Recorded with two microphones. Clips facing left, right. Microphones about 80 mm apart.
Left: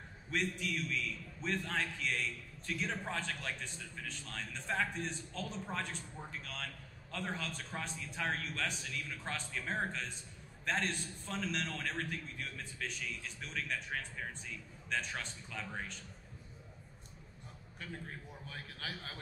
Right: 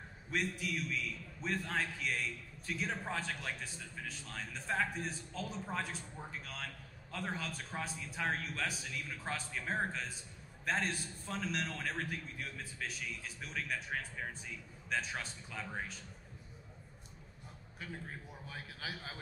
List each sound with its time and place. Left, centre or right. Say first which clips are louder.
0.3 s a man's voice: even; centre
17.7 s a man's voice: even; centre